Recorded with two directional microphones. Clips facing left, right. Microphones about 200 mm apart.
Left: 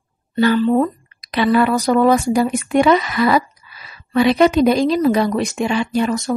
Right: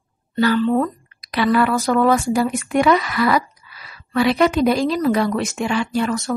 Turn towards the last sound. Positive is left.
turn(degrees=15)  # may be behind; listen again after turning